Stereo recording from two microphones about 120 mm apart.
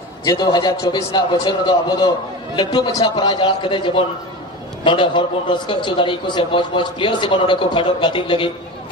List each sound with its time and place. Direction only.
0.2 s a man's voice: 35° left (ahead or behind)